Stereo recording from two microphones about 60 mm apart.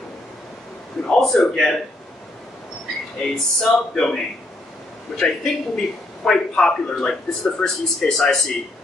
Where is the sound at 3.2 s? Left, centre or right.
Centre.